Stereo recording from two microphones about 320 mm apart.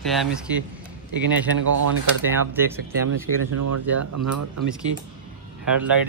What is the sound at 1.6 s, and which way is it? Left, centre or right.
Speech, right.